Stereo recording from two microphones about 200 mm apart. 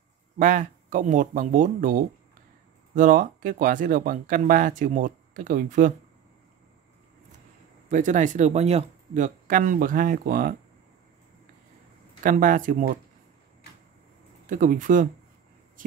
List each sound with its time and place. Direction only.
0.4 s speech: 40° right (ahead or behind)
7.9 s speech: 40° right (ahead or behind)
12.2 s speech: 40° right (ahead or behind)
14.4 s speech: 40° right (ahead or behind)